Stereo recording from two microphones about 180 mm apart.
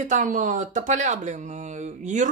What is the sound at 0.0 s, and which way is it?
Speech, 45° right (ahead or behind).